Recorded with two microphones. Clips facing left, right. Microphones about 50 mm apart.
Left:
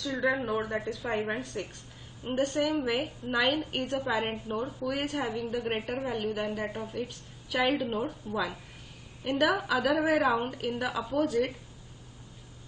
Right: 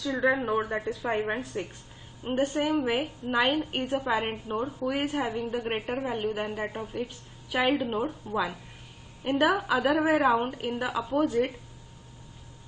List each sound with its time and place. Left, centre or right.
0.2 s a woman's voice: centre
9.2 s a woman's voice: centre